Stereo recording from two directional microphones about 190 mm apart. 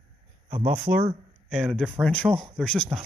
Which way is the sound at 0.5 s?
40° right (ahead or behind).